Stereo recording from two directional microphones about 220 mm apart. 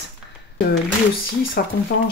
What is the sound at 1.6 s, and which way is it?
Speech, 45° left (ahead or behind).